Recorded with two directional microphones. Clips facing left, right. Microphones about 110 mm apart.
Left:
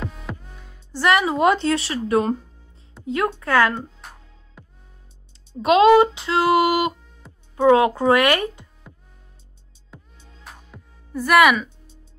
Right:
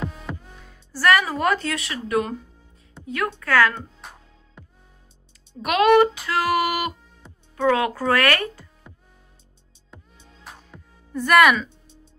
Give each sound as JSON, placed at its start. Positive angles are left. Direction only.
{"t": 0.0, "sound": "music", "side_deg": 0}
{"t": 0.9, "sound": "a woman's voice", "side_deg": 20}
{"t": 4.0, "sound": "music", "side_deg": 0}
{"t": 5.6, "sound": "a woman's voice", "side_deg": 25}
{"t": 7.2, "sound": "music", "side_deg": 0}
{"t": 7.6, "sound": "a woman's voice", "side_deg": 25}
{"t": 10.4, "sound": "music", "side_deg": 5}